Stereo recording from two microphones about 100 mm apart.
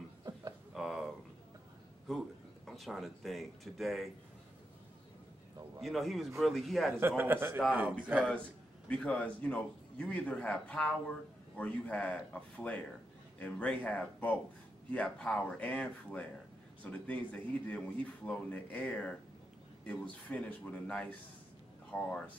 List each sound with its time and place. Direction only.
0.2 s a sound: 40° right (ahead or behind)
0.7 s a sound: centre (ahead or behind)
2.0 s speech: centre (ahead or behind)
5.8 s speech: centre (ahead or behind)
7.0 s a man's voice: 20° right (ahead or behind)
8.8 s speech: 15° left (ahead or behind)